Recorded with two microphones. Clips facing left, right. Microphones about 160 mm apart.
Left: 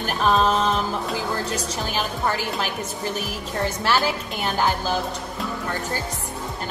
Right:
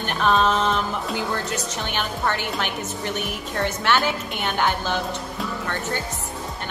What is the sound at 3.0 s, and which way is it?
A woman's voice, 35° left (ahead or behind).